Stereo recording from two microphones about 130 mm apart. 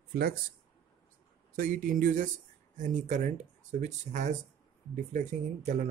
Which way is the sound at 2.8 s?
75° right (ahead or behind).